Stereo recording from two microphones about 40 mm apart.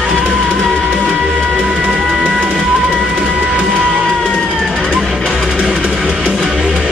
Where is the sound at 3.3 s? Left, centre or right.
Right.